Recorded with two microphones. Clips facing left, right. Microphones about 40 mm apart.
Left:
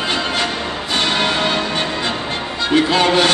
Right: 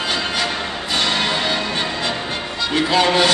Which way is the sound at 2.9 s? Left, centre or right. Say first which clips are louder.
Right 2 dB; left.